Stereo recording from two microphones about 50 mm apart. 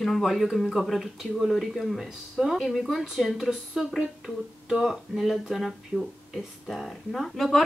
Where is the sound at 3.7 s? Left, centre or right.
Centre.